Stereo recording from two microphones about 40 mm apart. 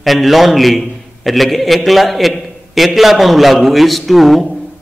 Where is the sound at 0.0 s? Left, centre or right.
Centre.